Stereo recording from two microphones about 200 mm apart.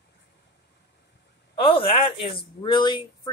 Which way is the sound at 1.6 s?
30° left (ahead or behind).